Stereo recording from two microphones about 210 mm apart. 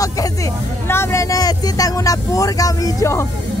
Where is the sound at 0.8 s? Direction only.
10° left (ahead or behind).